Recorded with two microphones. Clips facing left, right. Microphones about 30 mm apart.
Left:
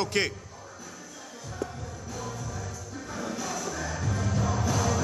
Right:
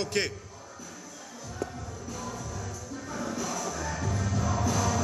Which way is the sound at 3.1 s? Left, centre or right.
Centre.